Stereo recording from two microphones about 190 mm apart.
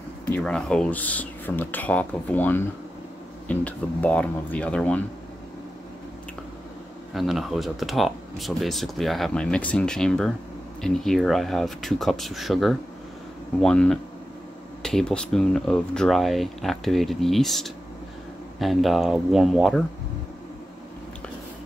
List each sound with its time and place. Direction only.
0.2 s speech: 5° left (ahead or behind)
7.2 s speech: centre (ahead or behind)